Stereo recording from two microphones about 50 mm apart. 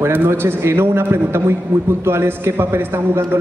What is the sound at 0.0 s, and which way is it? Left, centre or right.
A man's voice, right.